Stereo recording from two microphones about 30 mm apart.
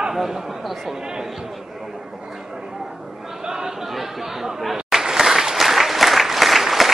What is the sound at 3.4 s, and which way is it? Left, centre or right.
Chatter, centre.